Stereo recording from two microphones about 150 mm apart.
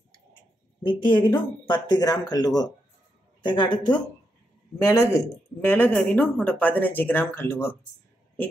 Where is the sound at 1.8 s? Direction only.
25° left (ahead or behind).